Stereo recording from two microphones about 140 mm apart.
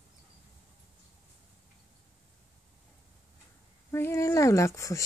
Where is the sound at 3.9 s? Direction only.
20° left (ahead or behind).